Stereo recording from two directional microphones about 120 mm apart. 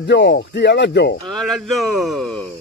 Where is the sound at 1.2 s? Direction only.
5° left (ahead or behind).